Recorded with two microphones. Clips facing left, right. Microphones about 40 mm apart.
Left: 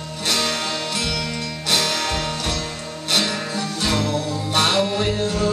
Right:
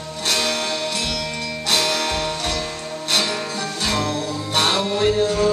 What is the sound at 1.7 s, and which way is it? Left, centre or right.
Music, right.